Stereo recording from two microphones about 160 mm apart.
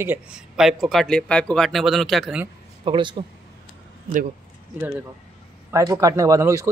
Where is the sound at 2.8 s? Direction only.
30° right (ahead or behind).